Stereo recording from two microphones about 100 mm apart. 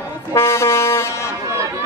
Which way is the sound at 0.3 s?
25° left (ahead or behind).